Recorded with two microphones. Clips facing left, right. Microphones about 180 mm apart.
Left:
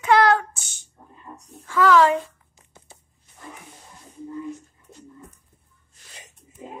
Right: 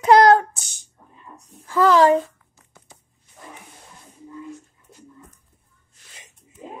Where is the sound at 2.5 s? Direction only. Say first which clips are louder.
Even; 25° left (ahead or behind).